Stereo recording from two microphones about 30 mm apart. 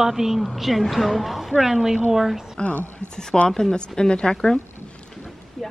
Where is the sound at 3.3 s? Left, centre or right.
Centre.